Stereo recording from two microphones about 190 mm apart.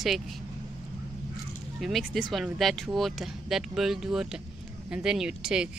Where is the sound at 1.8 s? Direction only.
Centre (ahead or behind).